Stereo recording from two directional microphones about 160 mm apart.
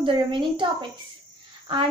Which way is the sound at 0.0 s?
30° right (ahead or behind).